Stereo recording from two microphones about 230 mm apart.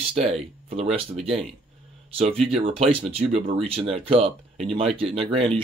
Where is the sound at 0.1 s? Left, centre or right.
Right.